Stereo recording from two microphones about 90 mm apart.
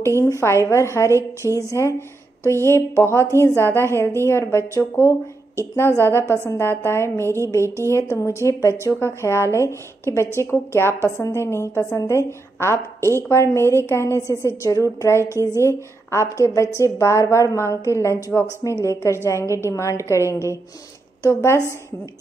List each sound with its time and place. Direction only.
0.3 s a woman's voice: 30° left (ahead or behind)
15.2 s a woman's voice: 30° right (ahead or behind)
15.6 s a woman's voice: 30° left (ahead or behind)
18.3 s speech: 20° left (ahead or behind)
19.2 s a woman's voice: 35° left (ahead or behind)
21.2 s speech: 30° left (ahead or behind)